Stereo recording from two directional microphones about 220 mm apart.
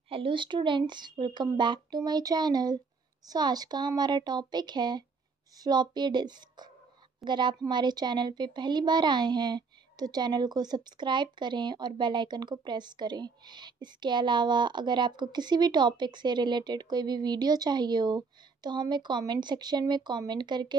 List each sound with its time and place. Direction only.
0.1 s a woman's voice: 25° right (ahead or behind)